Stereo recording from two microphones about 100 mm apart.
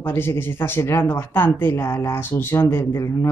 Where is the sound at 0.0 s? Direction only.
20° left (ahead or behind).